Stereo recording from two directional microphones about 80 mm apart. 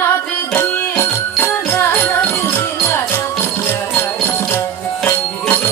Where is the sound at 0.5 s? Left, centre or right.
Left.